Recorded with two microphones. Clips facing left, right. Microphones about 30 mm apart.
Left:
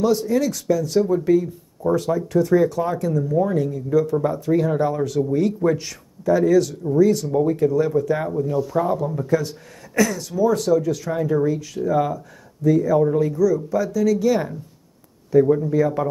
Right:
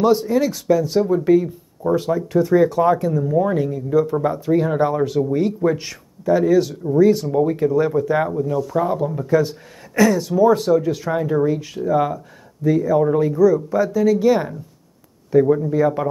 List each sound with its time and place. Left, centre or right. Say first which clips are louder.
0.0 s speech: right 3 dB; centre
8.5 s speech: even; centre
8.8 s speech: right 1 dB; centre
15.3 s speech: right 1 dB; centre